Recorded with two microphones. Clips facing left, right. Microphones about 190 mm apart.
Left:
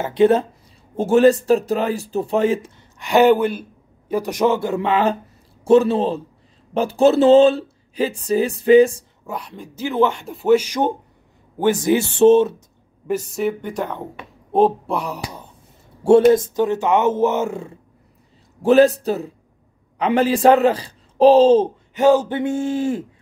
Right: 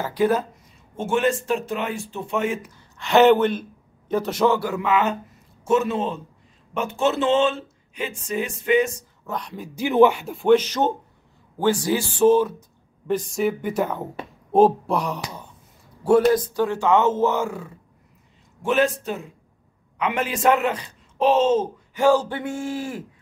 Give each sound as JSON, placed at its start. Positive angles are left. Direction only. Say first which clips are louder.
{"t": 0.0, "sound": "speech", "louder": "left 6 dB", "side_deg": 25}
{"t": 0.9, "sound": "speech", "louder": "left 8 dB", "side_deg": 35}
{"t": 3.0, "sound": "speech", "louder": "left 1 dB", "side_deg": 10}
{"t": 9.2, "sound": "a woman's voice", "louder": "even", "side_deg": 5}
{"t": 9.8, "sound": "speech", "louder": "right 3 dB", "side_deg": -15}
{"t": 13.0, "sound": "speech", "louder": "left 1 dB", "side_deg": 5}
{"t": 16.0, "sound": "speech", "louder": "left 5 dB", "side_deg": 25}
{"t": 18.6, "sound": "speech", "louder": "left 8 dB", "side_deg": 35}
{"t": 21.9, "sound": "speech", "louder": "left 4 dB", "side_deg": 20}